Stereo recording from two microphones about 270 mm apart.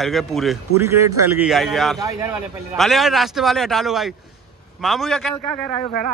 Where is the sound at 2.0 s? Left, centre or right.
Centre.